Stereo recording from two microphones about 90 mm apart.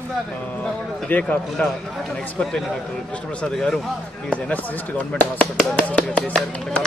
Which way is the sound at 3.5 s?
5° left (ahead or behind).